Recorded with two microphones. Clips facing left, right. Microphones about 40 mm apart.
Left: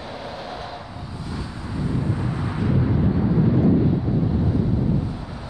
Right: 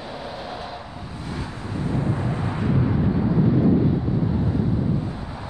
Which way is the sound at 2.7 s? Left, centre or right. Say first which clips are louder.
Left 1 dB; centre.